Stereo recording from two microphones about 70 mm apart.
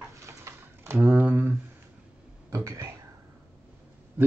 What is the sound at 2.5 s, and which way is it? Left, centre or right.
Speech, right.